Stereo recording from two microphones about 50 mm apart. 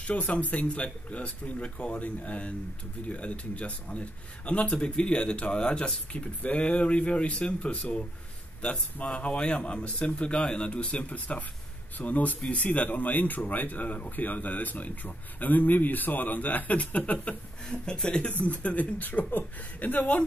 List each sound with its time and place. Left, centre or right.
0.0 s a man's voice: left
9.0 s a man's voice: left
17.6 s speech: centre
18.4 s speech: left